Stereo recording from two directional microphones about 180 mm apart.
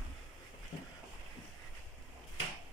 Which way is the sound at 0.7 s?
20° left (ahead or behind).